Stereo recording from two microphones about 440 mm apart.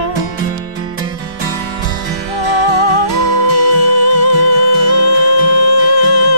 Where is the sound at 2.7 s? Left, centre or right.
Left.